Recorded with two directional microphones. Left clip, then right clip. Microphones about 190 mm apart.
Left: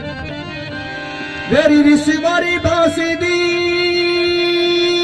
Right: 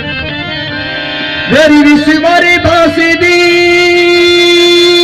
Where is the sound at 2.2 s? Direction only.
45° left (ahead or behind).